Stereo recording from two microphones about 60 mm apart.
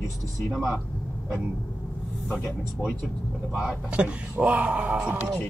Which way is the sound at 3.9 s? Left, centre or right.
Right.